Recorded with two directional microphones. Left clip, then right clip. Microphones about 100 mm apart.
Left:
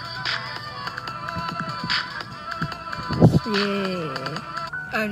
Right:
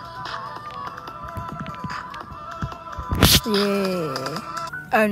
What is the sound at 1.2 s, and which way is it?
Music, 65° left (ahead or behind).